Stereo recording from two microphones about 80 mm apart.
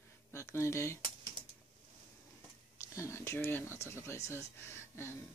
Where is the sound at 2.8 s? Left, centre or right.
Left.